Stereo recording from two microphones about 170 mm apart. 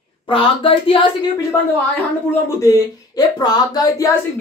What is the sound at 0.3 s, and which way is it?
Speech, 30° left (ahead or behind).